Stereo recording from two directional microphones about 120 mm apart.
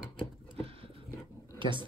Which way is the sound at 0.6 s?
50° right (ahead or behind).